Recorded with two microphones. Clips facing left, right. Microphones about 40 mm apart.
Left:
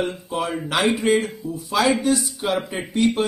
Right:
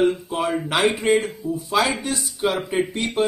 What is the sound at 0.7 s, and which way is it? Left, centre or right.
Speech, right.